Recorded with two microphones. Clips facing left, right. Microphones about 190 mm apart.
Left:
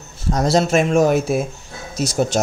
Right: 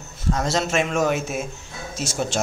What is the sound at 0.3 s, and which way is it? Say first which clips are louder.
Speech: left 6 dB; 35° left (ahead or behind).